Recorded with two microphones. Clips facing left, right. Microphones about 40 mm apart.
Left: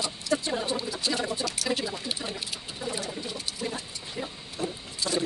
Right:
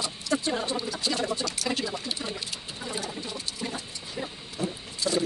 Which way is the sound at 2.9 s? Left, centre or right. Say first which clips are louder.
Even; centre.